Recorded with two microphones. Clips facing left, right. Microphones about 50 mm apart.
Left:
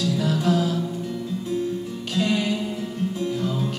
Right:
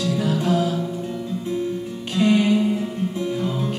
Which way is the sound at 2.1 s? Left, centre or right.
Right.